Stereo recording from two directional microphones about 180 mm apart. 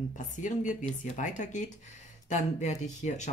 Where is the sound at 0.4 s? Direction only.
45° left (ahead or behind).